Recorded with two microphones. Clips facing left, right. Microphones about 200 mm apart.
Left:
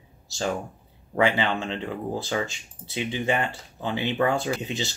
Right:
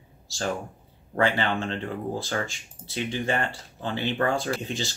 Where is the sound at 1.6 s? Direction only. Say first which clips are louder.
Even; 15° left (ahead or behind).